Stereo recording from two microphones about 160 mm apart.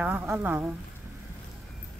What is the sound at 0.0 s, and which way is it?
Speech, 10° right (ahead or behind).